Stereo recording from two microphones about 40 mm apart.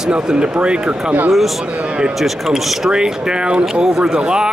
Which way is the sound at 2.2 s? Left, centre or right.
Centre.